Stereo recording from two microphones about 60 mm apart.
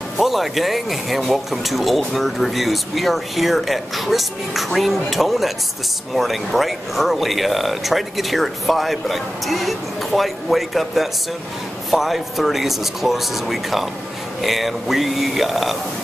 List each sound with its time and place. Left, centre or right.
0.2 s speech: centre